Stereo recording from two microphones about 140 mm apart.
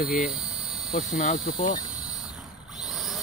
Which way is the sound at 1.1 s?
65° left (ahead or behind).